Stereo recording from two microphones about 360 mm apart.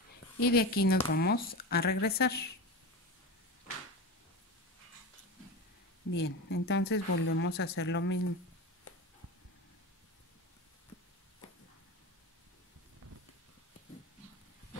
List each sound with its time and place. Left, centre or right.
0.4 s speech: left
6.1 s speech: left